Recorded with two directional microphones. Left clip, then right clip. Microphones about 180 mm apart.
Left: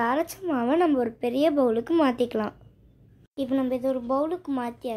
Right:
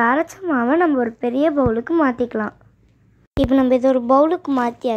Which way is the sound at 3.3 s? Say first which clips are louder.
Right 11 dB; 30° right (ahead or behind).